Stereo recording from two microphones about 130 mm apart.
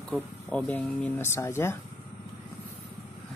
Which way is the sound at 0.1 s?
5° left (ahead or behind).